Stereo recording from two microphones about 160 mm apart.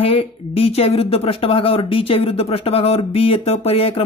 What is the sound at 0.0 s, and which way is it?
Speech, 40° left (ahead or behind).